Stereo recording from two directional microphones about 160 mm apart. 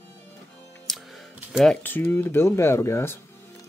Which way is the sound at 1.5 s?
5° left (ahead or behind).